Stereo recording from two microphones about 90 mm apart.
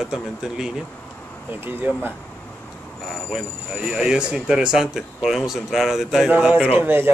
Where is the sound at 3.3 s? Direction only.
5° right (ahead or behind).